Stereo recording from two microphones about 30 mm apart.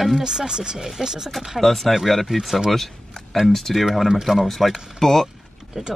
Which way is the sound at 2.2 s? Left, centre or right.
Centre.